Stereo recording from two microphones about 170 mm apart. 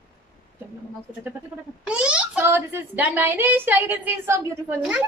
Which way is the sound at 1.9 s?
5° right (ahead or behind).